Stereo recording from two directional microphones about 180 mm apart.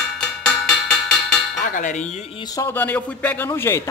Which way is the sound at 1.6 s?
45° left (ahead or behind).